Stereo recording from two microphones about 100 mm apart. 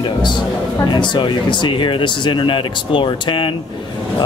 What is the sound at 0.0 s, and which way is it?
Speech, 50° left (ahead or behind).